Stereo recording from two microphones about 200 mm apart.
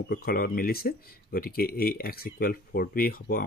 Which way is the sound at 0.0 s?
50° left (ahead or behind).